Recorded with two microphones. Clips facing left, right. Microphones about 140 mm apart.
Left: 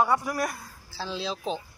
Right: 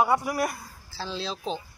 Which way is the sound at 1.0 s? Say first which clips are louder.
Left 1 dB; 10° left (ahead or behind).